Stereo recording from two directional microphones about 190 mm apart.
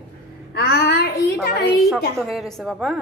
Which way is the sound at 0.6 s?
55° left (ahead or behind).